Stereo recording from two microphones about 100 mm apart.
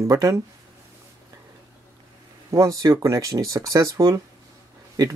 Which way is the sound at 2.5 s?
35° right (ahead or behind).